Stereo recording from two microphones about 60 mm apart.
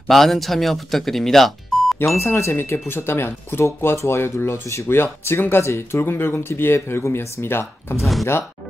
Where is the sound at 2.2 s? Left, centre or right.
Left.